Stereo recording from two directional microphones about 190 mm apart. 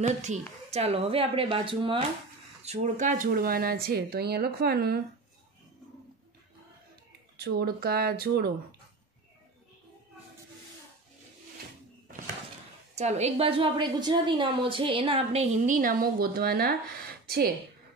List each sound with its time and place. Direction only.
0.0 s a woman's voice: 40° right (ahead or behind); by 5.0 s 55° right (ahead or behind)
7.3 s speech: 55° right (ahead or behind)
12.9 s a woman's voice: 35° right (ahead or behind); by 16.7 s 55° right (ahead or behind)